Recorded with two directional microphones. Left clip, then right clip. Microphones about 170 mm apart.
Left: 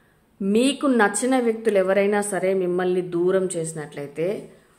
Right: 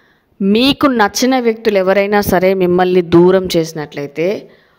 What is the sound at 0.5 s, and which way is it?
A woman's voice, 65° right (ahead or behind).